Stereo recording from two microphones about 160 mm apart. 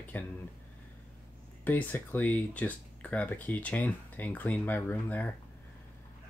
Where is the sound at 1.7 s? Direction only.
10° left (ahead or behind).